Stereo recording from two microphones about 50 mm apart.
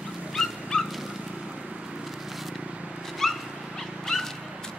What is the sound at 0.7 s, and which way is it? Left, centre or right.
Vehicle, centre.